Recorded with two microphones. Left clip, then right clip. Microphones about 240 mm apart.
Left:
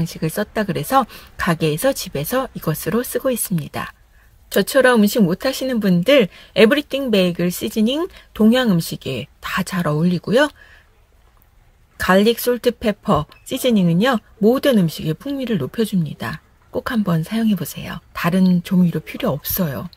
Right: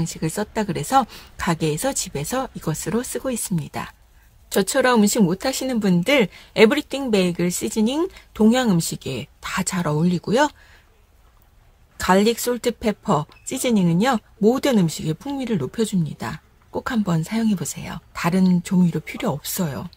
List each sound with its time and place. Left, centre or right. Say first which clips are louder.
0.0 s speech: left 3 dB; centre
12.0 s speech: left 3 dB; centre